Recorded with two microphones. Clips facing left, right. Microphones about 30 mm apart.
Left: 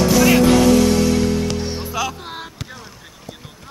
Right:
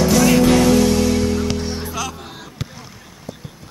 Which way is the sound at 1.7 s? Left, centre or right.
Centre.